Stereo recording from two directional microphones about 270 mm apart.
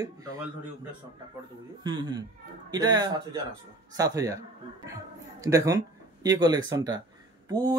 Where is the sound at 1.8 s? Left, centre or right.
Centre.